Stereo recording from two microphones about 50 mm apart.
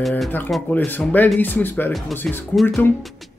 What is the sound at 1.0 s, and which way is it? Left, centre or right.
Speech, left.